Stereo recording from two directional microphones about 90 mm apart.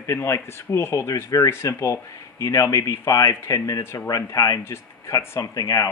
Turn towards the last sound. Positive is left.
turn(degrees=40)  # may be behind; listen again after turning